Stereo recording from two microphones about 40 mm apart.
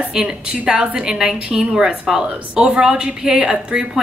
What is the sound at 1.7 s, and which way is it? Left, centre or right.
A woman's voice, right.